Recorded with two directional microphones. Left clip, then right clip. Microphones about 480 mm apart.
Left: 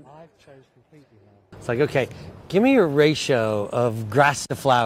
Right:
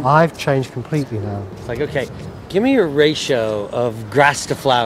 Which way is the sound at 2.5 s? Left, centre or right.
Left.